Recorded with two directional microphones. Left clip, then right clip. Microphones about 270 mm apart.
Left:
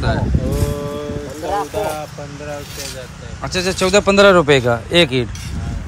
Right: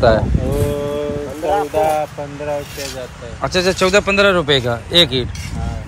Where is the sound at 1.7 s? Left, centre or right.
Right.